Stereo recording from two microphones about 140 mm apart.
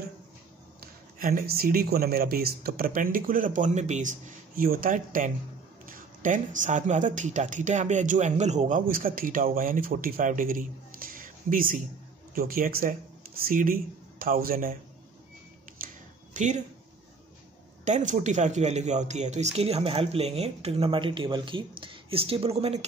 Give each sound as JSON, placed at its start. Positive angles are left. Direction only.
{"t": 0.7, "sound": "speech", "side_deg": -90}
{"t": 12.4, "sound": "speech", "side_deg": -90}
{"t": 16.3, "sound": "speech", "side_deg": -60}
{"t": 17.8, "sound": "speech", "side_deg": -60}